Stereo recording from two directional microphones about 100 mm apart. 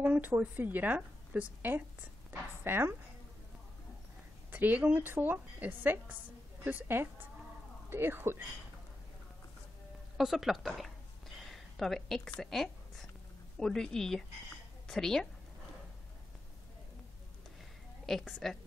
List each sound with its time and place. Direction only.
0.0 s a woman's voice: 15° right (ahead or behind)
4.5 s a woman's voice: 15° right (ahead or behind)
10.1 s a sound: 5° right (ahead or behind)
13.6 s a woman's voice: 5° left (ahead or behind)
18.0 s a woman's voice: centre (ahead or behind)